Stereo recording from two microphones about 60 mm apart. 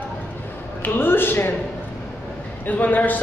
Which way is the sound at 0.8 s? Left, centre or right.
Left.